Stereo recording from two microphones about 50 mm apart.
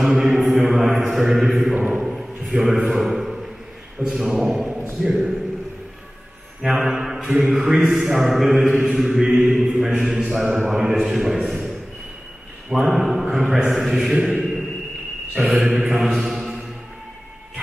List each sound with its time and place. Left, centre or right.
0.0 s mantra: centre
1.8 s a sound: right
2.0 s a sound: centre
4.1 s a man's voice: centre
6.6 s mantra: centre
7.9 s a man's voice: centre
8.6 s mantra: right
8.9 s a man's voice: centre
12.7 s mantra: centre
14.0 s chant: centre
15.4 s mantra: centre